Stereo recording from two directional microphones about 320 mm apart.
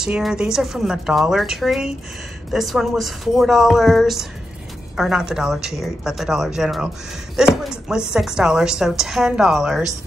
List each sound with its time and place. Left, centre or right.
0.0 s a woman's voice: centre